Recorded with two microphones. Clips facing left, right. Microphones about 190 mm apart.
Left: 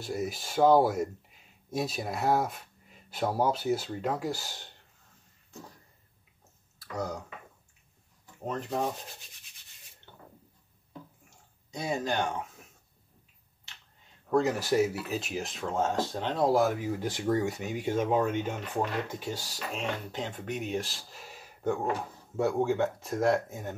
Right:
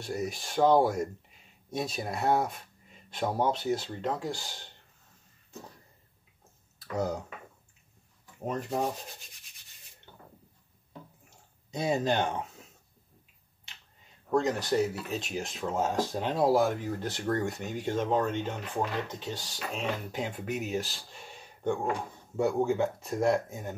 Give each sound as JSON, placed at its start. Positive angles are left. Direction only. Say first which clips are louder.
{"t": 0.0, "sound": "speech", "louder": "even", "side_deg": 0}
{"t": 8.6, "sound": "speech", "louder": "even", "side_deg": 0}
{"t": 11.2, "sound": "a sound", "louder": "right 1 dB", "side_deg": -25}
{"t": 14.3, "sound": "speech", "louder": "left 1 dB", "side_deg": 5}
{"t": 20.1, "sound": "speech", "louder": "right 2 dB", "side_deg": -10}